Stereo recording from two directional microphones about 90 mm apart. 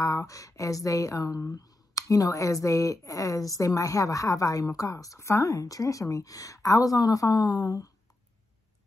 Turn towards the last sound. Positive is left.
turn(degrees=40)  # may be behind; listen again after turning